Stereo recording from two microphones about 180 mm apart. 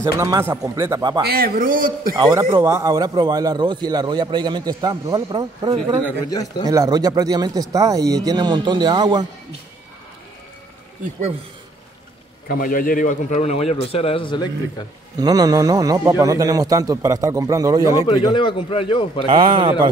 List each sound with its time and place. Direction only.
0.0 s a man's voice: 20° right (ahead or behind)
1.2 s a man's voice: 55° right (ahead or behind)
2.1 s a man's voice: 25° right (ahead or behind)
12.4 s a man's voice: 50° left (ahead or behind); by 14.9 s 25° left (ahead or behind)
15.1 s a man's voice: 20° right (ahead or behind)
18.0 s a man's voice: 25° left (ahead or behind)
19.2 s a man's voice: 25° right (ahead or behind)